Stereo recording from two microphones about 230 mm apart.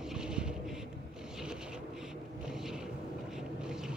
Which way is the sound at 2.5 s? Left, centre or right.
Centre.